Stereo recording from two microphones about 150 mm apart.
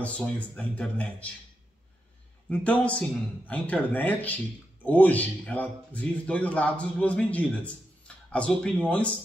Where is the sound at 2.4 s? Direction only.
10° left (ahead or behind).